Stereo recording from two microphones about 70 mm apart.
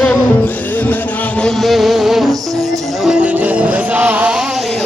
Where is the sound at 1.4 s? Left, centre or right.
Centre.